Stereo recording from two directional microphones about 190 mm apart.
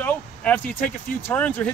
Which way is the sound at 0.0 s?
10° left (ahead or behind).